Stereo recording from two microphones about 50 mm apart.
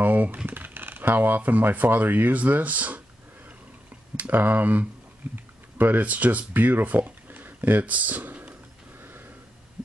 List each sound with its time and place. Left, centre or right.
0.0 s typing: right
0.5 s speech: right
4.3 s speech: right
9.0 s a sound: right